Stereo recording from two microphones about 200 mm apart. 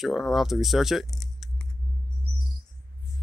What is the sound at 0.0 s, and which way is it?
Speech, centre (ahead or behind).